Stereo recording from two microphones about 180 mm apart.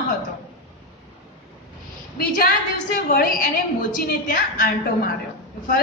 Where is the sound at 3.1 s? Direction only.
55° left (ahead or behind).